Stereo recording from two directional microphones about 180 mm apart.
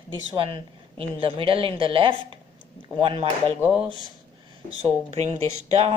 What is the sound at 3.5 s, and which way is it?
Speech, 10° right (ahead or behind).